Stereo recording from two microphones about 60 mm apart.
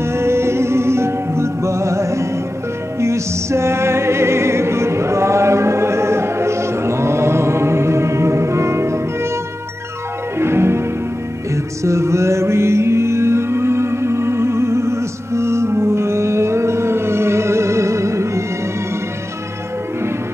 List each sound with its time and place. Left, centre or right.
0.0 s music: right
10.4 s music: right
11.5 s music: right